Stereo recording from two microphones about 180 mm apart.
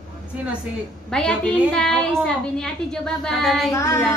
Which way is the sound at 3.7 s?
15° left (ahead or behind).